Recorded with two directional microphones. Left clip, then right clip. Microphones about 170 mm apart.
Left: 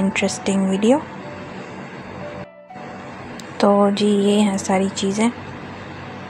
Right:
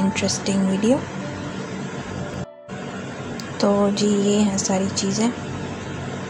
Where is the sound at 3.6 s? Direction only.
40° left (ahead or behind).